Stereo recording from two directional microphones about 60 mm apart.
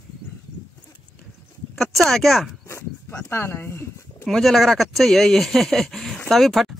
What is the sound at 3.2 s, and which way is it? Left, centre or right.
Speech, left.